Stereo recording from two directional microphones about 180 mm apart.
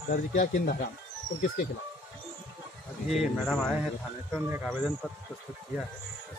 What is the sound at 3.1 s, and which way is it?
Speech, centre (ahead or behind).